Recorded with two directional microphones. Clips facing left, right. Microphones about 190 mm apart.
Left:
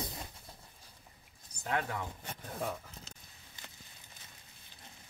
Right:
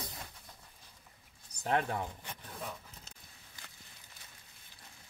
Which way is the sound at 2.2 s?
45° left (ahead or behind).